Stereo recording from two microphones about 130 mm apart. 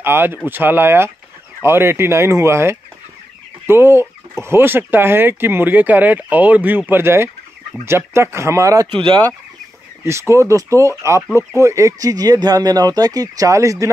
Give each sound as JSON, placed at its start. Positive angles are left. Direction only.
{"t": 0.0, "sound": "speech", "side_deg": -15}
{"t": 8.9, "sound": "speech", "side_deg": -40}
{"t": 10.3, "sound": "speech", "side_deg": -25}